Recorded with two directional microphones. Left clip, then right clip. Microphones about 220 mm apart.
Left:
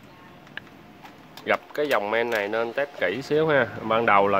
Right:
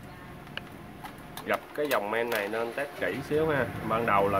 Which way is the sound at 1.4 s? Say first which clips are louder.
Left 5 dB; 45° left (ahead or behind).